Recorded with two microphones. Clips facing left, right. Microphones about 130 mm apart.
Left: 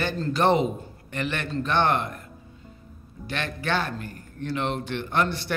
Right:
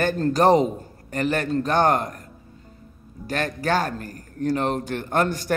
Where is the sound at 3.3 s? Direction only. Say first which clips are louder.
Right 5 dB; 40° right (ahead or behind).